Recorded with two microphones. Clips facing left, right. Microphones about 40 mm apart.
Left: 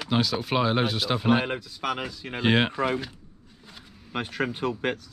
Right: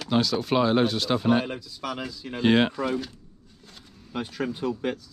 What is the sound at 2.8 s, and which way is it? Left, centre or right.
Speech, left.